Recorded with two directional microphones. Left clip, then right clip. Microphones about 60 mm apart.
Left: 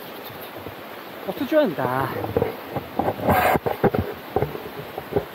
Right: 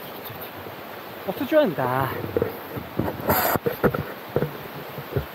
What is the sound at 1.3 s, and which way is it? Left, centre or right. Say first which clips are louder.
Speech: even; centre.